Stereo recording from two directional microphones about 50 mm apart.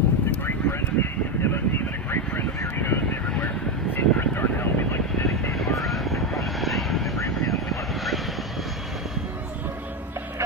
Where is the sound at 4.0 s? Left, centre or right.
Left.